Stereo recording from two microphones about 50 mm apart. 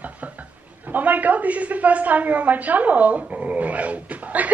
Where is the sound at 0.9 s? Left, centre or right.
Right.